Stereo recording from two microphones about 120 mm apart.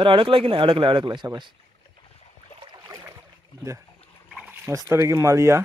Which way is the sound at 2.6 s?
40° right (ahead or behind).